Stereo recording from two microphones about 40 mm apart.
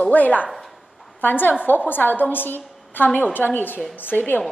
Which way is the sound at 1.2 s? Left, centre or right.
Left.